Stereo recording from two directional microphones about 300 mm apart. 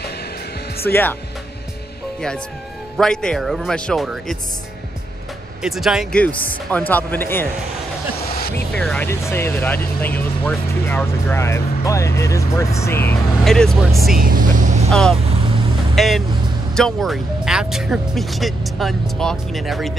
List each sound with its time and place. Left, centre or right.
0.8 s speech: centre
3.0 s speech: centre
5.6 s speech: centre
8.3 s music: left
8.7 s speech: centre
14.1 s vehicle: right
14.9 s speech: centre